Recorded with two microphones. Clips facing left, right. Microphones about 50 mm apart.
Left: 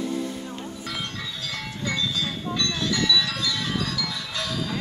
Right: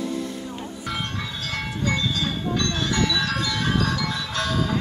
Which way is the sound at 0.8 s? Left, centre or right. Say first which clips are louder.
Right 4 dB; right.